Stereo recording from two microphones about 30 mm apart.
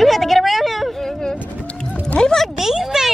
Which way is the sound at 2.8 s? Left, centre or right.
Centre.